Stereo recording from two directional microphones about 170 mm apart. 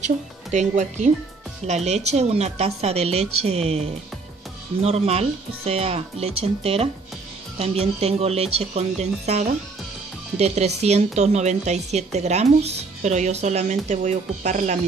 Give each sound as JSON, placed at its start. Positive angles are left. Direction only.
{"t": 0.0, "sound": "speech", "side_deg": -45}